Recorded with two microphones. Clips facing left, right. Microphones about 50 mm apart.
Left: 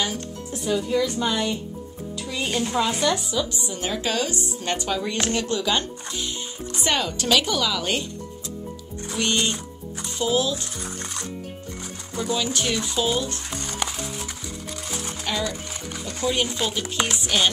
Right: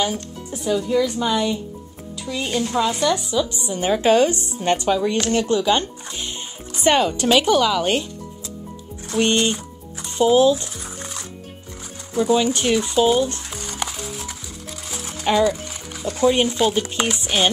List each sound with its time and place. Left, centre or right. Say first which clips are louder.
0.0 s speech: right 4 dB; centre
3.6 s speech: right 9 dB; centre
4.8 s speech: right 6 dB; centre
9.1 s speech: right 7 dB; centre
10.1 s speech: right 9 dB; right
12.2 s speech: right 7 dB; centre
13.5 s music: even; centre
15.2 s speech: right 11 dB; centre